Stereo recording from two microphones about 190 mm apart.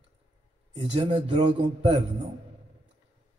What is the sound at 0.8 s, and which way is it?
Speech, 30° right (ahead or behind).